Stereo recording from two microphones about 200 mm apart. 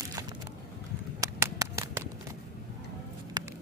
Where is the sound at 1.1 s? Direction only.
15° right (ahead or behind).